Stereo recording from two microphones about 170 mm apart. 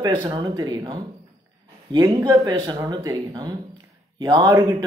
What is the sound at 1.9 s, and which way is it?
A man's voice, 25° right (ahead or behind).